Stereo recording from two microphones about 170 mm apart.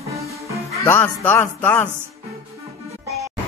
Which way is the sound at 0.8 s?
10° left (ahead or behind).